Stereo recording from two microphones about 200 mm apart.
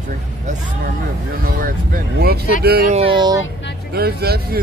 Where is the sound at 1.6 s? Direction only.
45° right (ahead or behind).